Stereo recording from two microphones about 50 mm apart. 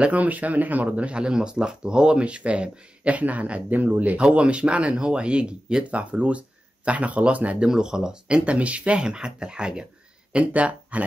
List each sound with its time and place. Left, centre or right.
0.0 s speech: right
4.2 s speech: centre
7.6 s speech: centre; by 11.1 s right